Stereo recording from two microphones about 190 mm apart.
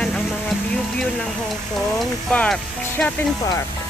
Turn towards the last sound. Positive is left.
turn(degrees=5)  # may be behind; listen again after turning